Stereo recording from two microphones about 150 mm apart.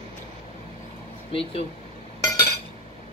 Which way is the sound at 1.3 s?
40° left (ahead or behind).